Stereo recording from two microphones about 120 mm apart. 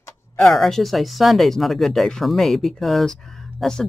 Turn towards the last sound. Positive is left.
turn(degrees=5)  # may be behind; listen again after turning